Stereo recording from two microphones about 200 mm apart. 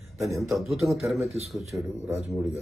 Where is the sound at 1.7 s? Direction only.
15° right (ahead or behind).